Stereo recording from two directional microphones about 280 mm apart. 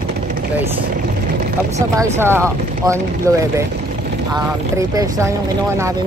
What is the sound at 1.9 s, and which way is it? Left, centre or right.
Speech, centre.